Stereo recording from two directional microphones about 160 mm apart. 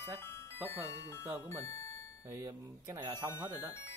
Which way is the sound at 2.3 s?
20° right (ahead or behind).